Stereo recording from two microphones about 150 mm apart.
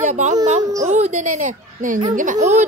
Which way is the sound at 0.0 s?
55° right (ahead or behind).